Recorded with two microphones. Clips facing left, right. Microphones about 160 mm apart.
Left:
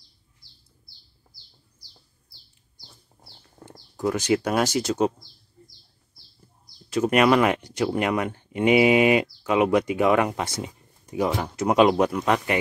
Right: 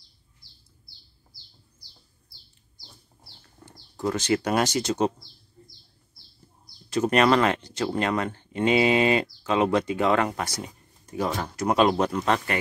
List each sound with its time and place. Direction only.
4.0 s speech: 10° left (ahead or behind)
6.9 s speech: 10° left (ahead or behind)
10.4 s a sound: 20° left (ahead or behind)
11.2 s speech: 10° left (ahead or behind)